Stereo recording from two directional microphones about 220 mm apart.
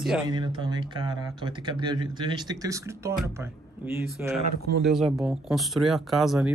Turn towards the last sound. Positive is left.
turn(degrees=0)  # may be behind; listen again after turning